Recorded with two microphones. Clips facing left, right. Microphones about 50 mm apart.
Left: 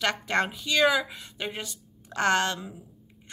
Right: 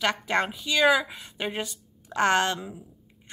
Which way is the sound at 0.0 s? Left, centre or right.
Centre.